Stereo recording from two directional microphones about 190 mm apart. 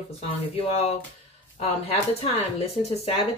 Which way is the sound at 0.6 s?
35° left (ahead or behind).